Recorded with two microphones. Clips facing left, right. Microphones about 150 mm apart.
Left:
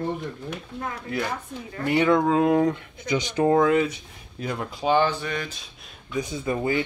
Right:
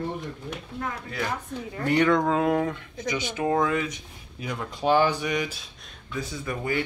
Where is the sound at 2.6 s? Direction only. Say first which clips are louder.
Left 5 dB; 30° left (ahead or behind).